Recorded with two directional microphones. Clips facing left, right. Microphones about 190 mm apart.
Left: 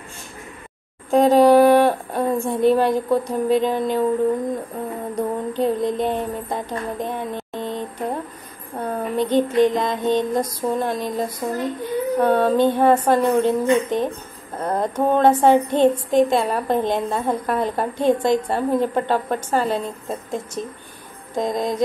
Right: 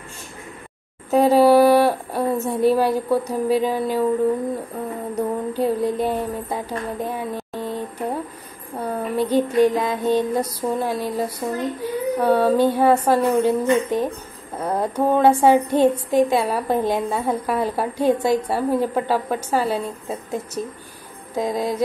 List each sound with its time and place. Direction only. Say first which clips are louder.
1.1 s a sound: left 1 dB; 10° right (ahead or behind)
2.5 s child singing: left 1 dB; 10° right (ahead or behind)
5.1 s child singing: even; 10° right (ahead or behind)